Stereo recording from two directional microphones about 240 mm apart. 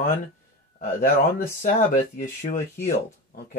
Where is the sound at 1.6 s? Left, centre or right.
Left.